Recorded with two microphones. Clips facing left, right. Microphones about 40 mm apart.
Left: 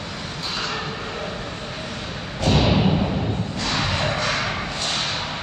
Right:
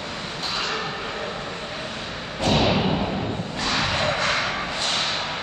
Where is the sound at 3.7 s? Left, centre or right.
Centre.